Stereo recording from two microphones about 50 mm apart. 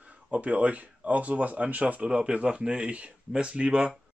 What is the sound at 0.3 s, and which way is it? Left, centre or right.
Speech, right.